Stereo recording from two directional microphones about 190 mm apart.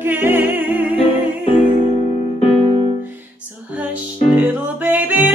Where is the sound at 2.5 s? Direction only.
30° right (ahead or behind).